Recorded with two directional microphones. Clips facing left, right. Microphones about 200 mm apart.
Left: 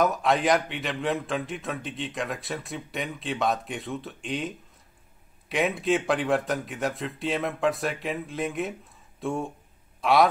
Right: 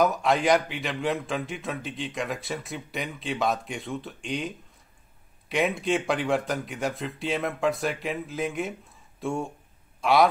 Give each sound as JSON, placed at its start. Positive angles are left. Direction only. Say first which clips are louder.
{"t": 0.0, "sound": "a man's voice", "louder": "even", "side_deg": 0}